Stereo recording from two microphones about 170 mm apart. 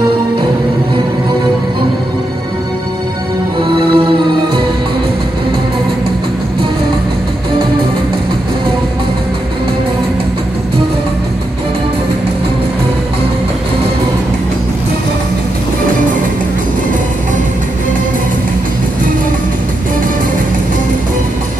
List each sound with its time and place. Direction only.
3.6 s music: 30° right (ahead or behind)